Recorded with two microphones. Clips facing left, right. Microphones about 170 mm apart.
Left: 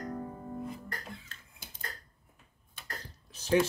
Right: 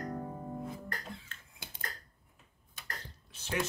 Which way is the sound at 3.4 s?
35° left (ahead or behind).